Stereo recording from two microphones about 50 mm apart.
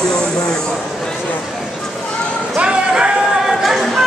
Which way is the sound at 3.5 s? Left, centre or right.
Centre.